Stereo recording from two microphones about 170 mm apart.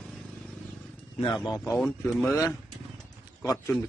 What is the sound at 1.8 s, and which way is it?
Speech, centre (ahead or behind).